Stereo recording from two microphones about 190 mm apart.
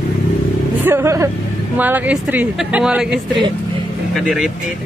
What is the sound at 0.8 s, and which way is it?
Speech, 15° right (ahead or behind).